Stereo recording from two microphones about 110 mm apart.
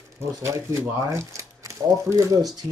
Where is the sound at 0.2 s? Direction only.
25° right (ahead or behind).